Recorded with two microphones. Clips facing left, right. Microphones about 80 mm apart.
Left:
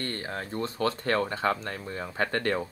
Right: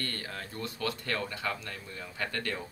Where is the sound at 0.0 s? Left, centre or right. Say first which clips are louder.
Left 5 dB; left.